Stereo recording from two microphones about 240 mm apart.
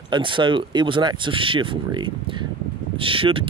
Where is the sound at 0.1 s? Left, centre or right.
Centre.